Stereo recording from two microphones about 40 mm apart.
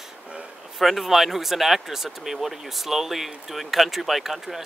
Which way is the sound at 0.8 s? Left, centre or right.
Centre.